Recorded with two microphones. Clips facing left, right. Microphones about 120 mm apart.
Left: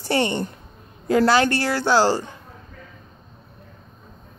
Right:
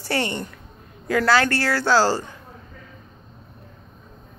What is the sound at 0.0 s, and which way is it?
A woman's voice, 25° left (ahead or behind).